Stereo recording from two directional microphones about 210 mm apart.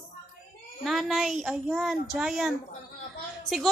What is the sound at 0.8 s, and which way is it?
A woman's voice, centre (ahead or behind).